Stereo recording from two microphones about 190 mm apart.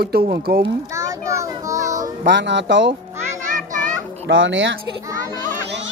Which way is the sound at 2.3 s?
70° right (ahead or behind).